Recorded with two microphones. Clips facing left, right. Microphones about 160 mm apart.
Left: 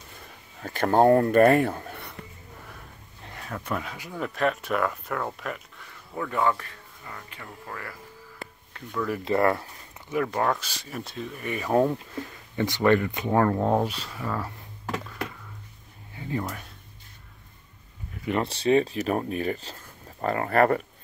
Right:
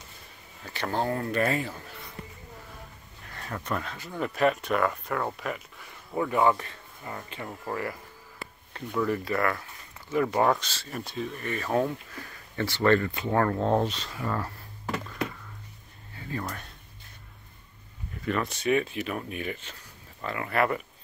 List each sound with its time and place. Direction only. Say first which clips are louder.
0.6 s speech: left 9 dB; 50° left (ahead or behind)
3.3 s speech: left 1 dB; 5° left (ahead or behind)
5.9 s speech: right 4 dB; 15° right (ahead or behind)
8.7 s a sound: right 4 dB; 30° right (ahead or behind)
9.2 s speech: left 5 dB; 25° left (ahead or behind)
10.2 s speech: right 3 dB; 10° right (ahead or behind)
10.6 s speech: left 1 dB; 10° left (ahead or behind)
11.4 s speech: left 2 dB; 15° left (ahead or behind)
11.7 s speech: left 5 dB; 25° left (ahead or behind); by 15.2 s centre (ahead or behind)
16.2 s a sound: left 4 dB; 20° left (ahead or behind)
16.4 s speech: left 1 dB; 5° left (ahead or behind)
18.3 s speech: left 4 dB; 30° left (ahead or behind)